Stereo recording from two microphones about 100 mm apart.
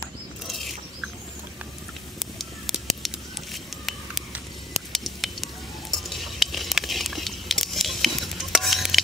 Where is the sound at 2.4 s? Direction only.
Centre (ahead or behind).